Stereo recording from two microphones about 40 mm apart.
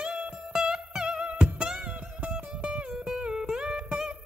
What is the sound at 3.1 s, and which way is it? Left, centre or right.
Music, centre.